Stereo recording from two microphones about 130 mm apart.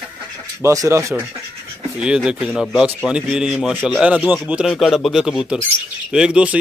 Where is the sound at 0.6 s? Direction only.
25° right (ahead or behind).